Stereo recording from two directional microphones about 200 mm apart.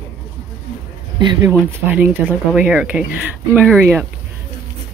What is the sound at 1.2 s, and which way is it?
Speech, 15° right (ahead or behind).